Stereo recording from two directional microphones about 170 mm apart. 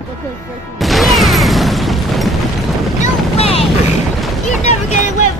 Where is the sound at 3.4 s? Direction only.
35° left (ahead or behind).